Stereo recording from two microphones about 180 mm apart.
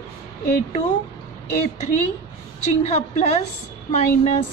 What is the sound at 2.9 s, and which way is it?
Speech, 40° left (ahead or behind).